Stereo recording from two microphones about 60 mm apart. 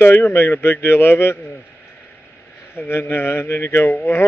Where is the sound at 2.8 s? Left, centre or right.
Left.